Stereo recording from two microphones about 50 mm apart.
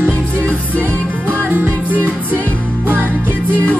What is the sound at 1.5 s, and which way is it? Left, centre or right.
Music, right.